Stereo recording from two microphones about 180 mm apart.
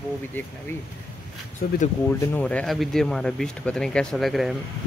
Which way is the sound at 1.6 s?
50° left (ahead or behind).